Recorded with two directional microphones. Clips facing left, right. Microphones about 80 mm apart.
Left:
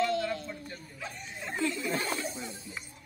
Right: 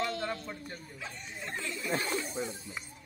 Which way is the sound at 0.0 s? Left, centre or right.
Right.